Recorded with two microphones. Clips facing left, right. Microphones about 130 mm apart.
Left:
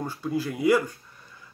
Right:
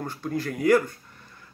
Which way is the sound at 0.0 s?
10° left (ahead or behind).